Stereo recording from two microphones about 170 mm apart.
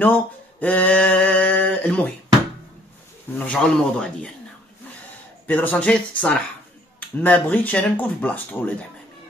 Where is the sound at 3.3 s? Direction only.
10° left (ahead or behind).